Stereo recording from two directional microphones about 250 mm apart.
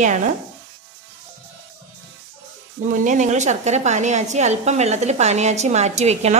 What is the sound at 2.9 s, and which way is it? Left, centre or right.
A woman's voice, right.